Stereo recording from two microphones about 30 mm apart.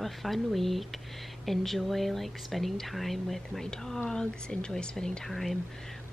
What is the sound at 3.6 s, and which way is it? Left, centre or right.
Speech, centre.